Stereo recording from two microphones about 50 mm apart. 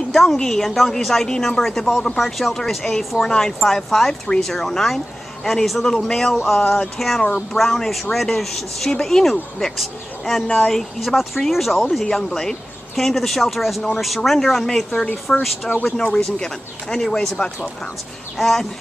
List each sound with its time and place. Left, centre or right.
0.1 s a woman's voice: centre
6.1 s a woman's voice: centre
10.4 s speech: left
10.7 s a woman's voice: centre
18.4 s speech: centre